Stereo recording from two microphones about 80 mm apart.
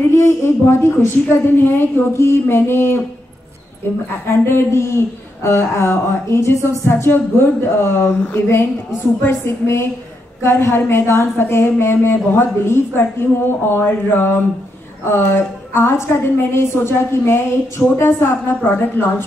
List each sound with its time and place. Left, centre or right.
0.1 s a woman's voice: left